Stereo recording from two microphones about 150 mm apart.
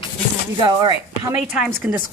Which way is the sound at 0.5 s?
25° right (ahead or behind).